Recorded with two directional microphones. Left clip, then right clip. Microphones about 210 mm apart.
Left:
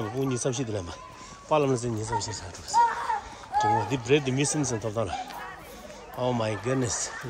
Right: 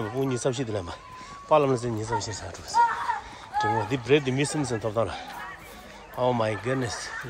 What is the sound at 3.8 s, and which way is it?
Speech, 15° left (ahead or behind).